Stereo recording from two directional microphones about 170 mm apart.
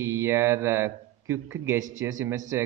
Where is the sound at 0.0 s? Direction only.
15° right (ahead or behind).